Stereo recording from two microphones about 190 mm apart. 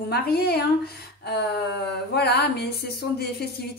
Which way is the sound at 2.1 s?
60° left (ahead or behind).